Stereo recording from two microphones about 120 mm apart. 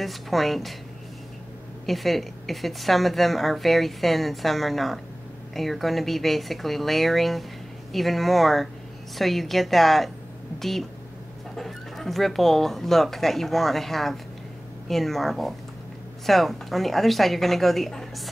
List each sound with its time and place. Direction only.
0.0 s speech: centre (ahead or behind)
1.9 s speech: centre (ahead or behind)